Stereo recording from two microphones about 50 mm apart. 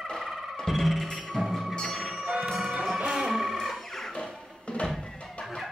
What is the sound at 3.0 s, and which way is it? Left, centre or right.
Music, centre.